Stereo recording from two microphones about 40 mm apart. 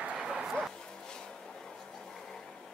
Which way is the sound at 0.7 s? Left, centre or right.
Centre.